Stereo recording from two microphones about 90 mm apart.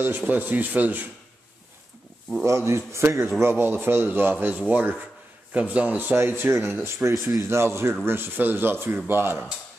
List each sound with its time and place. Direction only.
0.3 s speech: 20° right (ahead or behind)
2.4 s a man's voice: 30° right (ahead or behind)